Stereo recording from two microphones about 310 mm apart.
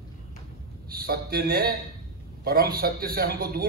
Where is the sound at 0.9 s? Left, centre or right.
Right.